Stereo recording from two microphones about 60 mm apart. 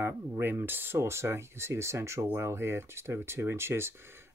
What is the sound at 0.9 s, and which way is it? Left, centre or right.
Speech, right.